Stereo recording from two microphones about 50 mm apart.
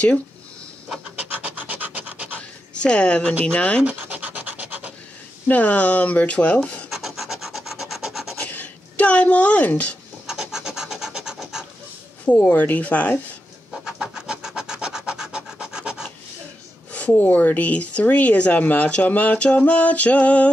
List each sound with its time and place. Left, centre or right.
1.1 s pant: right
2.8 s speech: left
3.8 s scratch: right
5.5 s speech: left
6.9 s rub: centre
8.5 s a sound: left
10.2 s rub: centre
12.4 s speech: left
13.8 s rub: centre
16.9 s speech: left